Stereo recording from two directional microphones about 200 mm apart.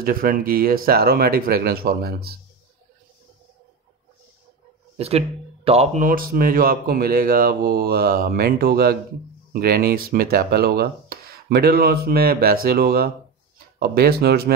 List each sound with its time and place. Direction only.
0.0 s speech: 45° right (ahead or behind)
4.9 s speech: 30° right (ahead or behind); by 14.5 s 50° right (ahead or behind)